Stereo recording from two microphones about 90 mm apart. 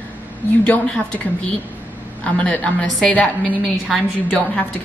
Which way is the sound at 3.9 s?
5° right (ahead or behind).